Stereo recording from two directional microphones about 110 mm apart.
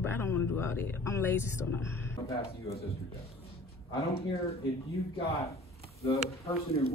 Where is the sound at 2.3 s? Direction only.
65° left (ahead or behind).